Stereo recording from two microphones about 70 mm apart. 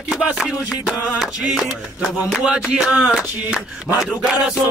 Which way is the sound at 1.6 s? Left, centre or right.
Centre.